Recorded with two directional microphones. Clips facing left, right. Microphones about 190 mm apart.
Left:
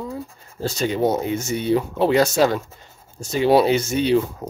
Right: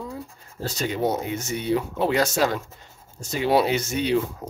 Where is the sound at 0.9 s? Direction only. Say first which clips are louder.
Left 4 dB; 30° left (ahead or behind).